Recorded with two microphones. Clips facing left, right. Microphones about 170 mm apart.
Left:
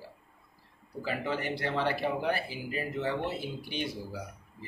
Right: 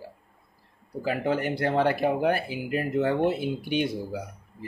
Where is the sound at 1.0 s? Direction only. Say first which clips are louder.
Right 7 dB; 50° right (ahead or behind).